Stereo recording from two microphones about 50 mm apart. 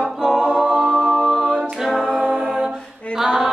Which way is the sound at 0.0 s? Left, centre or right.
Centre.